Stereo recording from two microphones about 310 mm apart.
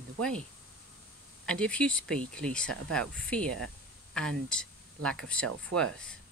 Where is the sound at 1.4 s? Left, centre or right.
Centre.